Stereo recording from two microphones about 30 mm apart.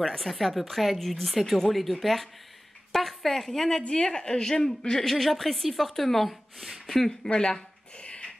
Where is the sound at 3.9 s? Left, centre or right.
Left.